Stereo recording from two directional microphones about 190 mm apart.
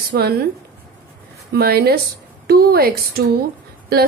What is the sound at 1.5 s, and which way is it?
Speech, 55° right (ahead or behind).